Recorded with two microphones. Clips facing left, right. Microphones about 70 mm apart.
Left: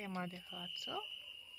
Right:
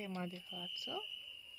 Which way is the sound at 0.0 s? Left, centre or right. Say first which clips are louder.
Even; left.